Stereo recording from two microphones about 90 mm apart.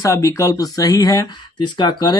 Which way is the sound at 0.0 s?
35° left (ahead or behind).